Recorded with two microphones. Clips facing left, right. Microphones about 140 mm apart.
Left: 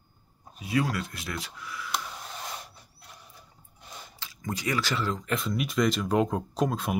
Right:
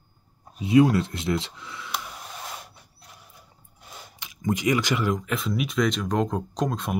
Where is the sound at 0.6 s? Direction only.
25° right (ahead or behind).